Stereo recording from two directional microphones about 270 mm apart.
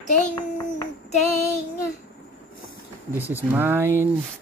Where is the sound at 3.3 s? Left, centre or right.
Centre.